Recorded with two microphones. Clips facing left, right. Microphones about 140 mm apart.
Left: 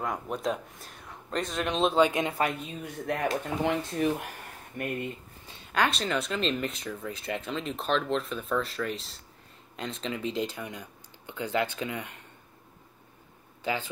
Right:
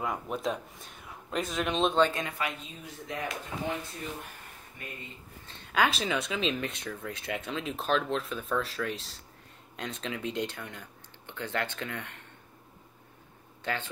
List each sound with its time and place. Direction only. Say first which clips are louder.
0.0 s speech: left 1 dB; centre (ahead or behind)
2.0 s speech: left 5 dB; 20° left (ahead or behind)
2.8 s speech: left 6 dB; 60° left (ahead or behind)
3.6 s speech: left 9 dB; 85° left; by 5.1 s 60° left (ahead or behind)
5.7 s speech: even; centre (ahead or behind)